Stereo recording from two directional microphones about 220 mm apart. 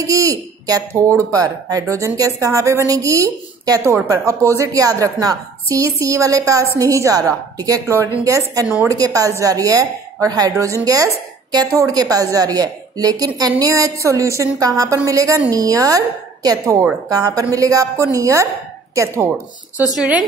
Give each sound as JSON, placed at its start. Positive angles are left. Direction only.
{"t": 0.0, "sound": "a woman's voice", "side_deg": -15}